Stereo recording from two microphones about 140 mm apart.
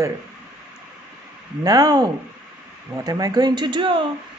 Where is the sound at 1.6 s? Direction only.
25° right (ahead or behind).